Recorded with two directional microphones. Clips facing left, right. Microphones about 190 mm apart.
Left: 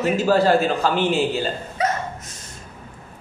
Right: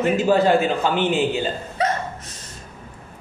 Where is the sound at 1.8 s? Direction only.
30° right (ahead or behind).